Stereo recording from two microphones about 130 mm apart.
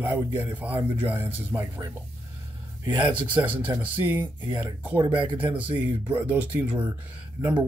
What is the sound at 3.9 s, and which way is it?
Speech, 15° right (ahead or behind).